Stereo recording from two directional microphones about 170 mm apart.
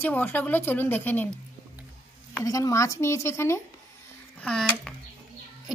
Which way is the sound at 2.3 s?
20° left (ahead or behind).